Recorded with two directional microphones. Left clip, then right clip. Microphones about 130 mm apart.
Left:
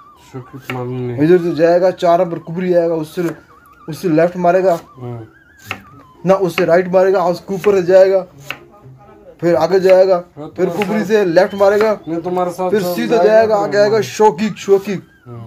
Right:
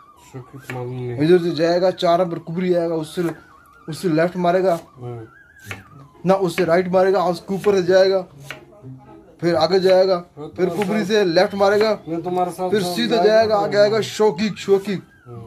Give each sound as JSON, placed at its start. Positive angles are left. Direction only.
{"t": 0.9, "sound": "speech", "side_deg": 0}
{"t": 1.2, "sound": "speech", "side_deg": -10}
{"t": 6.2, "sound": "speech", "side_deg": -15}
{"t": 9.4, "sound": "speech", "side_deg": -10}
{"t": 12.1, "sound": "speech", "side_deg": 5}
{"t": 13.0, "sound": "speech", "side_deg": -5}